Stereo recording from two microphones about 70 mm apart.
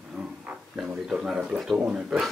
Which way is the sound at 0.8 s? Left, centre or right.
Centre.